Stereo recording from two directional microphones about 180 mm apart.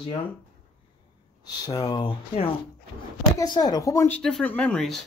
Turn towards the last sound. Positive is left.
turn(degrees=5)  # may be behind; listen again after turning